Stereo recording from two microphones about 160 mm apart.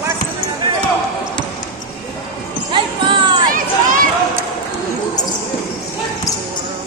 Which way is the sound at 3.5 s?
60° right (ahead or behind).